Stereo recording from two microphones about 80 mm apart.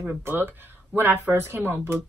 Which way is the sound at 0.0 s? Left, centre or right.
Right.